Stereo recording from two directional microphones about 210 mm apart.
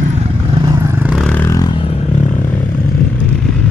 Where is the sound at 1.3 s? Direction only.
10° left (ahead or behind); by 2.3 s 30° left (ahead or behind).